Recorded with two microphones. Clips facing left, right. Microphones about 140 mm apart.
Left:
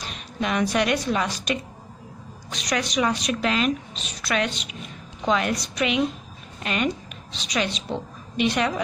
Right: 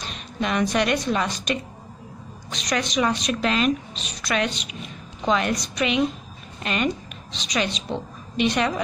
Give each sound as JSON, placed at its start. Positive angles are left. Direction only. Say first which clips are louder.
{"t": 0.0, "sound": "a woman's voice", "louder": "right 1 dB", "side_deg": 5}